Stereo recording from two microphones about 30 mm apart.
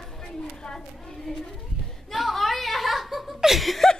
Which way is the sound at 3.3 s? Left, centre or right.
Centre.